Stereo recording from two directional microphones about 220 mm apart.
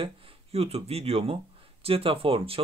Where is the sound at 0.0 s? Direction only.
25° right (ahead or behind).